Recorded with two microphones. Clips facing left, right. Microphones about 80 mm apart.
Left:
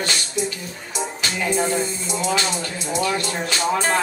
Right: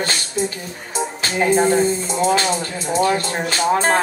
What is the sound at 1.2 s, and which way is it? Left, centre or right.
Speech, right.